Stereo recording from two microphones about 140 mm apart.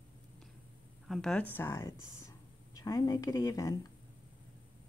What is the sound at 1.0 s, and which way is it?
Speech, centre (ahead or behind).